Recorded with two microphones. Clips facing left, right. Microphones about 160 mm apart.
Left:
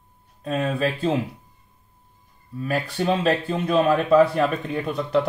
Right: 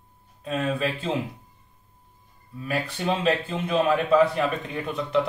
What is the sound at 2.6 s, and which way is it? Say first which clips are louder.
Speech: left 3 dB; 40° left (ahead or behind).